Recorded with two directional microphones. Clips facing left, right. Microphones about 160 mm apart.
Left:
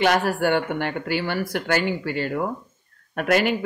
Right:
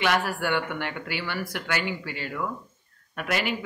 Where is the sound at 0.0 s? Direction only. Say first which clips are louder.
Left 6 dB; 40° left (ahead or behind).